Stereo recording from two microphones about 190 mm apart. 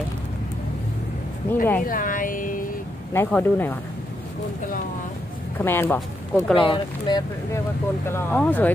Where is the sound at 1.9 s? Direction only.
45° left (ahead or behind).